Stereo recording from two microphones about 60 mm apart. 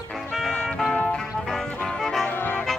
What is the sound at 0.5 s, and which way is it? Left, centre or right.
Music, centre.